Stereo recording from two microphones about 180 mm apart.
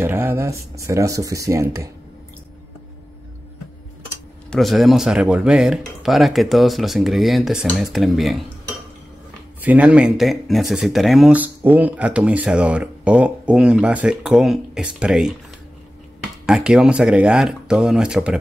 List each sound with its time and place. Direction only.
0.0 s speech: 15° right (ahead or behind)
4.5 s speech: centre (ahead or behind)
9.6 s speech: 10° right (ahead or behind)
16.4 s speech: 5° right (ahead or behind)